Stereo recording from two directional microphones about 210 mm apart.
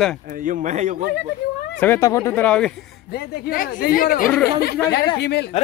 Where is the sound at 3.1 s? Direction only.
50° left (ahead or behind).